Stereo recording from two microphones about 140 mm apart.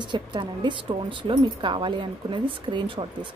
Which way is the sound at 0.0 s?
35° right (ahead or behind).